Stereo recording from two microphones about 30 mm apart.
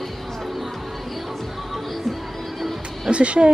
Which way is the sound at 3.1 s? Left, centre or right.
Right.